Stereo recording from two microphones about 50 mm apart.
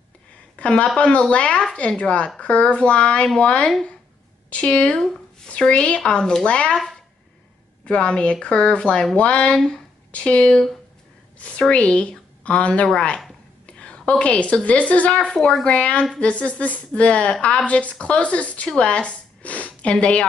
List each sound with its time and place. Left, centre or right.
0.6 s speech: left
7.8 s a woman's voice: left